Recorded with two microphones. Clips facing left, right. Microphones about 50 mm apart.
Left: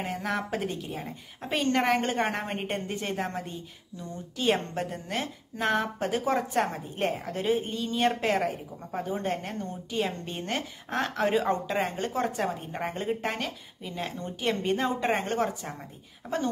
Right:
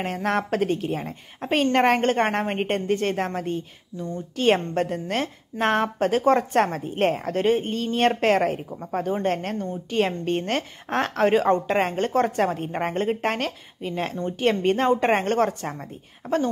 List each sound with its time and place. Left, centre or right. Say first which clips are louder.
0.0 s a woman's voice: right 6 dB; right